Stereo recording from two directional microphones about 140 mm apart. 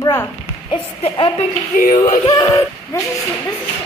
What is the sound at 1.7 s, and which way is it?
Speech, 65° left (ahead or behind).